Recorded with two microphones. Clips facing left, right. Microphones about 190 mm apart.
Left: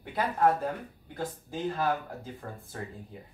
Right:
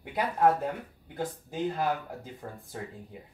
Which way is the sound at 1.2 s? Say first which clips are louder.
Right 2 dB; 15° right (ahead or behind).